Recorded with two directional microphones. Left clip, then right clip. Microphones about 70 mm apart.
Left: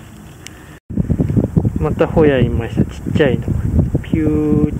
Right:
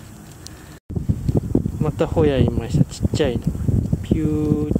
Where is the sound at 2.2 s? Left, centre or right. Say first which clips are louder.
Left 5 dB; right.